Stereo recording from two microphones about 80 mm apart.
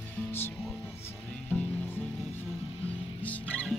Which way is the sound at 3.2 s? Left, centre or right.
Centre.